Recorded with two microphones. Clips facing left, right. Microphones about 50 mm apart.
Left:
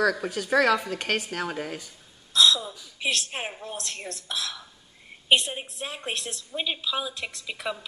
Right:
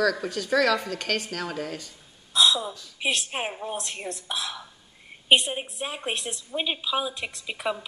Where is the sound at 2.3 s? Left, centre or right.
Centre.